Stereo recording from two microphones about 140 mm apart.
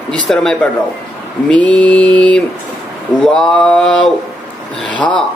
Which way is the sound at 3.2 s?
5° left (ahead or behind).